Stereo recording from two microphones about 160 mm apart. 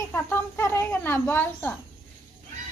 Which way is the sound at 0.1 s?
15° left (ahead or behind).